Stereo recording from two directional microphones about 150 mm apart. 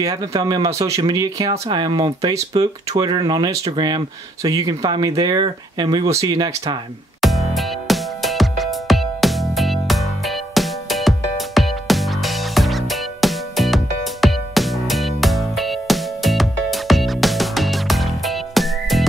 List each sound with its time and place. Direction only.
0.0 s speech: 25° right (ahead or behind)
7.2 s music: centre (ahead or behind)